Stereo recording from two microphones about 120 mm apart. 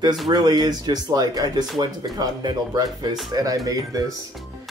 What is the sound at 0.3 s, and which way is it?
Speech, 35° right (ahead or behind).